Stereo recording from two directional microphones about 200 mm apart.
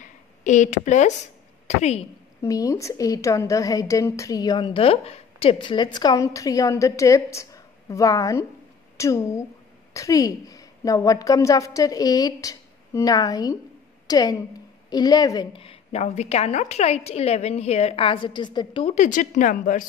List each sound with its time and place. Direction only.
0.0 s a sound: 35° left (ahead or behind)
1.7 s a woman's voice: 35° left (ahead or behind)
2.4 s a woman's voice: 15° left (ahead or behind)
18.9 s a woman's voice: 40° left (ahead or behind)